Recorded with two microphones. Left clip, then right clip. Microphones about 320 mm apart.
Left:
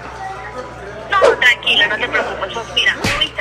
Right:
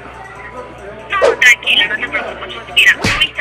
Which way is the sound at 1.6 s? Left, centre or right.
Left.